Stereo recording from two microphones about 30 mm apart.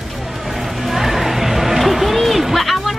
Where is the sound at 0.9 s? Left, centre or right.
Centre.